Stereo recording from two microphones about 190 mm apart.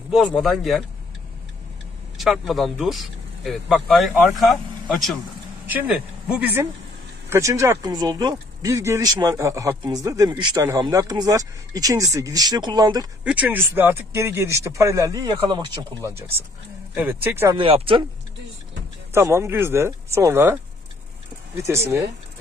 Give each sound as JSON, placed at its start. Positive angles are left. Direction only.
{"t": 0.1, "sound": "speech", "side_deg": 5}
{"t": 2.1, "sound": "speech", "side_deg": 0}
{"t": 13.2, "sound": "speech", "side_deg": -5}
{"t": 16.9, "sound": "speech", "side_deg": -10}
{"t": 17.6, "sound": "speech", "side_deg": -30}
{"t": 19.1, "sound": "speech", "side_deg": -15}
{"t": 21.5, "sound": "speech", "side_deg": -15}